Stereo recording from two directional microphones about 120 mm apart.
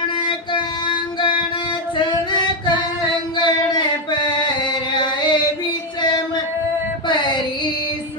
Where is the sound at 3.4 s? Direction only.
35° left (ahead or behind).